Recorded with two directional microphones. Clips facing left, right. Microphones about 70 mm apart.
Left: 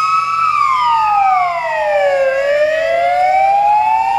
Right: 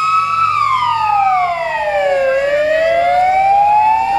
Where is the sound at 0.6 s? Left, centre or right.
Centre.